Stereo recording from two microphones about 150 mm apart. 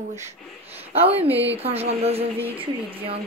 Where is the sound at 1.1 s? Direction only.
40° right (ahead or behind).